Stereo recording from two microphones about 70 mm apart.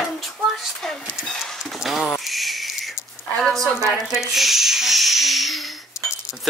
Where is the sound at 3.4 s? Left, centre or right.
Centre.